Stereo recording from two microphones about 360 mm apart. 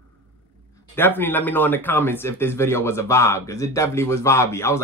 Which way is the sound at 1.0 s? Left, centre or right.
Centre.